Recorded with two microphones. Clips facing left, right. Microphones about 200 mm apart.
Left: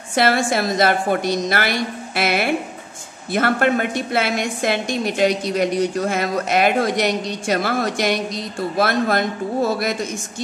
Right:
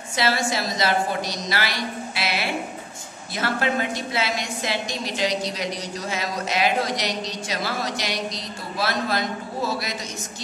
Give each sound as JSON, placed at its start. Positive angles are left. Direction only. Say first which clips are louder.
{"t": 0.1, "sound": "a woman's voice", "louder": "left 6 dB", "side_deg": 55}